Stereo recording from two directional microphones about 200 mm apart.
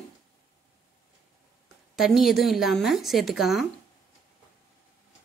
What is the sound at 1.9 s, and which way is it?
A woman's voice, centre (ahead or behind).